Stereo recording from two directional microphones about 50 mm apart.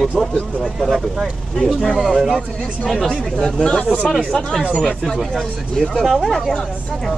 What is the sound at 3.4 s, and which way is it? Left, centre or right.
Speech, centre.